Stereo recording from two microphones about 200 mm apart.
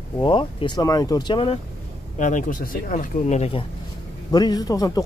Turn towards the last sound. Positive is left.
turn(degrees=20)  # may be behind; listen again after turning